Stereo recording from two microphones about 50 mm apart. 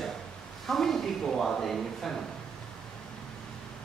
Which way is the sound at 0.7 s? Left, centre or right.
Centre.